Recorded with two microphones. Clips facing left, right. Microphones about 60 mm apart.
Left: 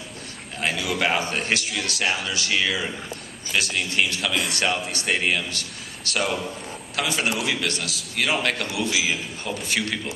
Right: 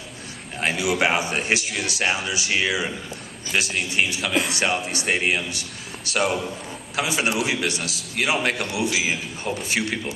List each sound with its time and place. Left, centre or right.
0.6 s a man's voice: centre
3.5 s a man's voice: centre
3.9 s a man's voice: centre
4.3 s a man's voice: centre
4.6 s a man's voice: right
9.5 s a man's voice: centre
9.8 s a man's voice: centre